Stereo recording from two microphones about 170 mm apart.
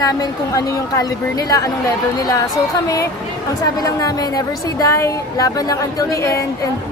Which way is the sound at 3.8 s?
20° left (ahead or behind).